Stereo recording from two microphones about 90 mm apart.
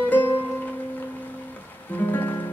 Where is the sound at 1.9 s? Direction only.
20° left (ahead or behind).